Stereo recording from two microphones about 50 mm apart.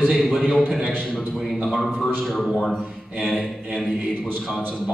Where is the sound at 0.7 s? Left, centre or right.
Right.